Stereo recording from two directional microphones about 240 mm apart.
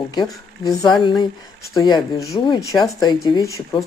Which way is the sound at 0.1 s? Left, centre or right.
Centre.